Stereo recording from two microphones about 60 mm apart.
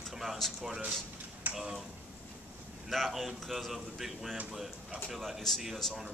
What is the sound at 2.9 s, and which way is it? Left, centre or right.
Speech, centre.